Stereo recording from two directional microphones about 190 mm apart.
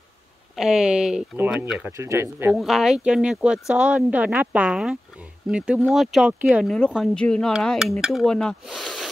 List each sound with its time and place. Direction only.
0.6 s speech: centre (ahead or behind)
2.5 s speech: centre (ahead or behind)